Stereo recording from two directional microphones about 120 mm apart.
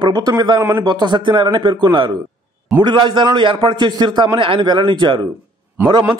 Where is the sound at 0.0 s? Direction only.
35° right (ahead or behind).